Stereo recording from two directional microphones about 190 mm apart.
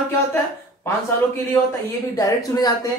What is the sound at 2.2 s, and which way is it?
Speech, 20° left (ahead or behind).